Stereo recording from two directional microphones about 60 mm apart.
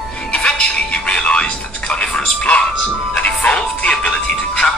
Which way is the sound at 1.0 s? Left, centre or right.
Centre.